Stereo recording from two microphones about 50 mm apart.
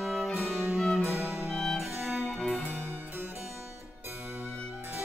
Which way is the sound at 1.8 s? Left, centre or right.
Centre.